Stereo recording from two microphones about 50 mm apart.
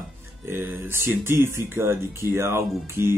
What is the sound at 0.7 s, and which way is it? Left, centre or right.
Speech, right.